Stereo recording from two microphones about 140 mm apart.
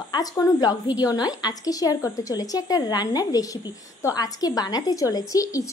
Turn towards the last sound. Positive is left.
turn(degrees=25)  # may be behind; listen again after turning